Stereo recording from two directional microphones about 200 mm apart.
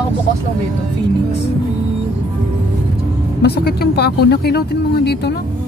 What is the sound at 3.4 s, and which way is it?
Speech, 55° left (ahead or behind).